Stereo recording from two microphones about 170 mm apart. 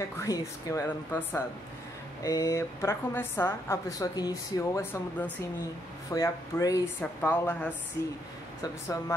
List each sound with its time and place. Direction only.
0.2 s a woman's voice: 20° left (ahead or behind)
7.0 s a woman's voice: 10° left (ahead or behind)